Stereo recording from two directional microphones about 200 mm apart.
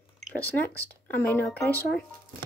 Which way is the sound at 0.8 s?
10° left (ahead or behind).